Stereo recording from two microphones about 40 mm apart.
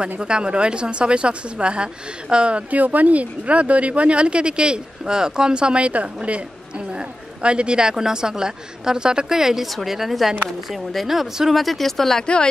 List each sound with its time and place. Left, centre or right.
0.2 s speech: right
2.7 s speech: right; by 12.3 s centre